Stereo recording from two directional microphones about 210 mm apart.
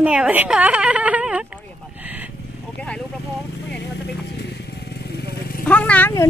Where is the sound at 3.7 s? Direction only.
50° left (ahead or behind).